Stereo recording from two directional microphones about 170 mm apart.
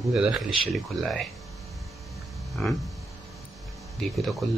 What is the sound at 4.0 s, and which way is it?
Speech, centre (ahead or behind).